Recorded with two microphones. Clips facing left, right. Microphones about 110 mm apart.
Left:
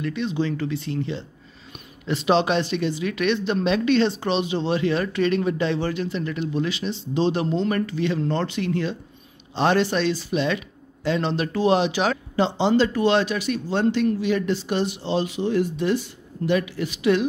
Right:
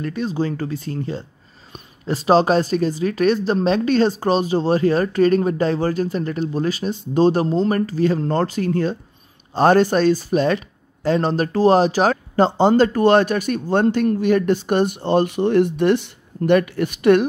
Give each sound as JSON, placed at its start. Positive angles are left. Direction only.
{"t": 0.0, "sound": "speech", "side_deg": -40}